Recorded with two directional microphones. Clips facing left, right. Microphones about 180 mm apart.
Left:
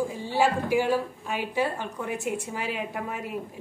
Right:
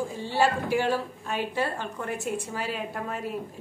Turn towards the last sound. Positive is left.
turn(degrees=15)  # may be behind; listen again after turning